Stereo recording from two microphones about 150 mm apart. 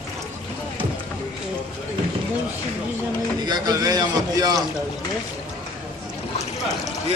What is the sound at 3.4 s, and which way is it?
Speech, 25° right (ahead or behind).